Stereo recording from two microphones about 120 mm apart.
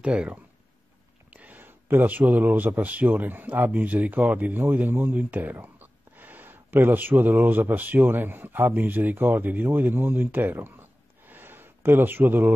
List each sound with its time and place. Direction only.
0.0 s speech: 10° right (ahead or behind)